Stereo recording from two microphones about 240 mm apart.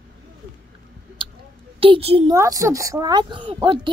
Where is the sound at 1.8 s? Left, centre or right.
Right.